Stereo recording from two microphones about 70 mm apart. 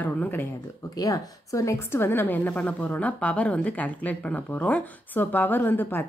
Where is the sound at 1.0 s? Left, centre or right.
Left.